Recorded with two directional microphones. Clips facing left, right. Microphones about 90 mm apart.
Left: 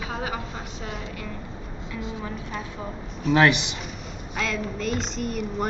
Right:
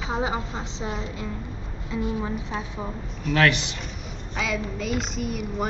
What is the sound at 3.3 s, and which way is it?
Speech, 20° left (ahead or behind).